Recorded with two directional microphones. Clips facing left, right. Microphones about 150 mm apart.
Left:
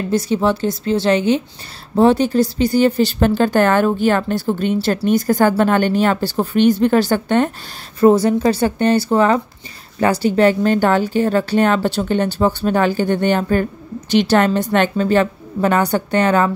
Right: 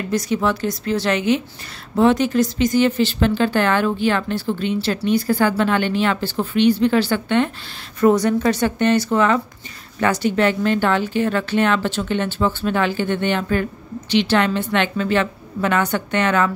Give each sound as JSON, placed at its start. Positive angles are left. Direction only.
{"t": 0.1, "sound": "a woman's voice", "side_deg": 30}
{"t": 8.0, "sound": "a woman's voice", "side_deg": 30}